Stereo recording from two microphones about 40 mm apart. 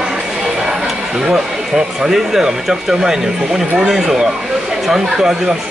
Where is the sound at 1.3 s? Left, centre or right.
Centre.